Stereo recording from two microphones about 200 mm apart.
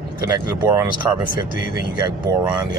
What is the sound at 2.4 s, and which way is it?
Speech, 20° right (ahead or behind).